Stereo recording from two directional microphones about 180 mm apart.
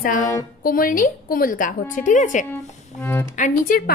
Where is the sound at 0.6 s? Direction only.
50° left (ahead or behind).